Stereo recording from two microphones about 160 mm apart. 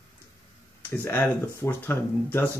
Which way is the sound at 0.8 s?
15° left (ahead or behind).